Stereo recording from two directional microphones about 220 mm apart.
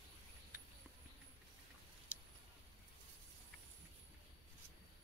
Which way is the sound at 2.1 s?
5° right (ahead or behind).